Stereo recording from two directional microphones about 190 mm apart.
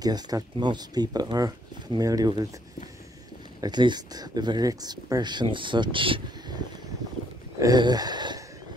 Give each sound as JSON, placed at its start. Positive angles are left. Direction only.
{"t": 0.0, "sound": "speech", "side_deg": -20}
{"t": 3.6, "sound": "speech", "side_deg": -20}